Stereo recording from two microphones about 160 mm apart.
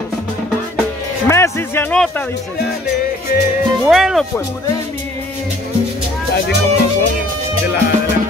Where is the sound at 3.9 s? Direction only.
Centre (ahead or behind).